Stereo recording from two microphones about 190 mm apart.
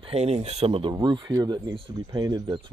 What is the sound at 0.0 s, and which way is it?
Speech, 35° right (ahead or behind).